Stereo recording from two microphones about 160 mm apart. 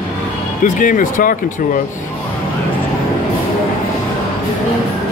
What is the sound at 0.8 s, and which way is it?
Speech, 55° left (ahead or behind).